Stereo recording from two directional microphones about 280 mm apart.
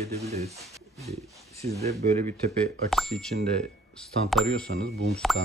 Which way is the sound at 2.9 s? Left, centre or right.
Centre.